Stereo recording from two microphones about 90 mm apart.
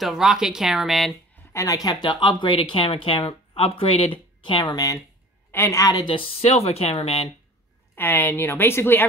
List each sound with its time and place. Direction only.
0.0 s speech: 5° right (ahead or behind)
1.5 s speech: 40° left (ahead or behind); by 4.7 s 65° left (ahead or behind)
5.5 s a woman's voice: 30° left (ahead or behind)
6.0 s speech: 85° left
7.9 s a woman's voice: 25° left (ahead or behind)